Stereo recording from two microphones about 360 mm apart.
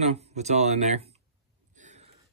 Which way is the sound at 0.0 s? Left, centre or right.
Centre.